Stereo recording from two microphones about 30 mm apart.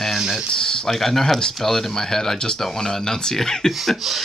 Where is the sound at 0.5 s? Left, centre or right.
Left.